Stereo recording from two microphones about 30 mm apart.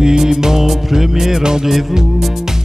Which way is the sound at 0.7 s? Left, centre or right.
Centre.